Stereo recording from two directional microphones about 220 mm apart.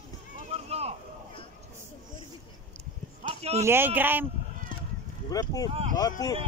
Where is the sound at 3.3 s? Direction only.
30° right (ahead or behind).